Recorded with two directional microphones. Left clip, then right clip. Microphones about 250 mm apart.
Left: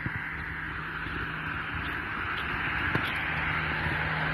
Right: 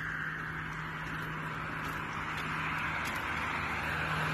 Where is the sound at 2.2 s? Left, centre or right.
Right.